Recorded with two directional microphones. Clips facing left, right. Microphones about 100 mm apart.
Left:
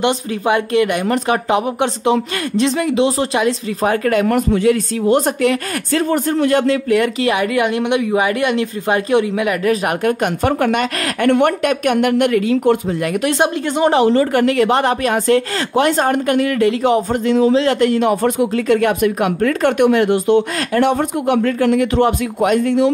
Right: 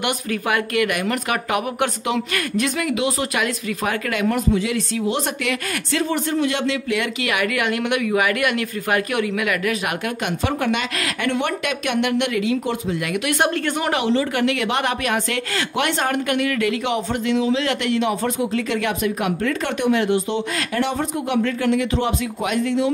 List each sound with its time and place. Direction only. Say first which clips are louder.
0.0 s speech: left 6 dB; 25° left (ahead or behind)
4.3 s speech: left 6 dB; 55° left (ahead or behind); by 13.4 s 35° left (ahead or behind)
13.4 s speech: left 6 dB; 20° left (ahead or behind)
14.0 s speech: left 6 dB; 45° left (ahead or behind)